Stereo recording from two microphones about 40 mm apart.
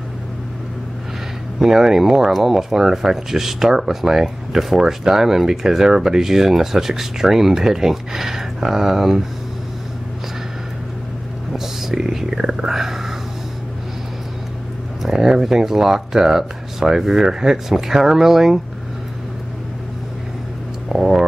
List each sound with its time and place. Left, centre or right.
1.6 s speech: centre
11.5 s whispering: centre
15.0 s speech: centre
20.9 s speech: centre